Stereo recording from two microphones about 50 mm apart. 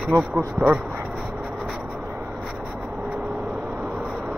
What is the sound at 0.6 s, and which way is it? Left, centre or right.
Speech, right.